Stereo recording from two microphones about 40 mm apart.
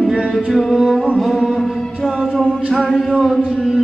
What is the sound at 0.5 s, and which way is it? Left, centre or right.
Music, centre.